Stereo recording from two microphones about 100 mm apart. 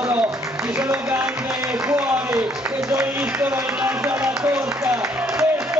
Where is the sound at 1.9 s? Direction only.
30° right (ahead or behind).